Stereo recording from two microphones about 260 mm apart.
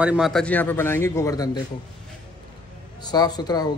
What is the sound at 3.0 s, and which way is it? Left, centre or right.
Speech, centre.